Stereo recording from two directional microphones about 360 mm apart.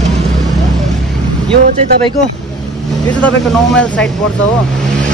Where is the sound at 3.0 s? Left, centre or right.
Centre.